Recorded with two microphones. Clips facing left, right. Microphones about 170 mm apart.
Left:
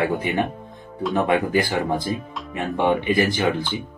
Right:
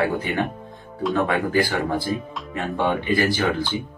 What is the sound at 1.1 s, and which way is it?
Speech, 20° left (ahead or behind).